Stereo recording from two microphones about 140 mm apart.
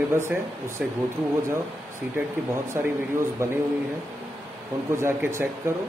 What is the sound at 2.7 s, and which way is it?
Speech, 20° right (ahead or behind).